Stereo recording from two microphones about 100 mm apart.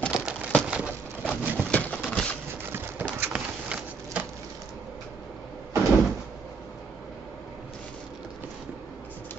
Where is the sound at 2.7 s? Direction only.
20° right (ahead or behind).